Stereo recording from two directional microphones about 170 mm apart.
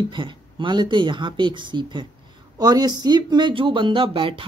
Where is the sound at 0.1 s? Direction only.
30° right (ahead or behind).